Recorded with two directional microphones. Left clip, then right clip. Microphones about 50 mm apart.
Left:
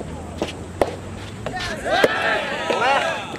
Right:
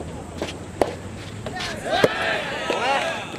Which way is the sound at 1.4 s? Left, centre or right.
Centre.